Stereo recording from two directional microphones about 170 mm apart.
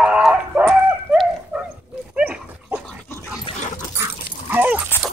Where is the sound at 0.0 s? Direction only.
5° right (ahead or behind).